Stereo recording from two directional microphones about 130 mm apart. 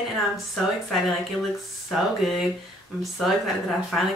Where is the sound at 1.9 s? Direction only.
Centre (ahead or behind).